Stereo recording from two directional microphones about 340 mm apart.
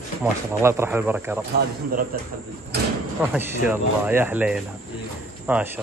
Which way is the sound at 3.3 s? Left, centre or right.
Centre.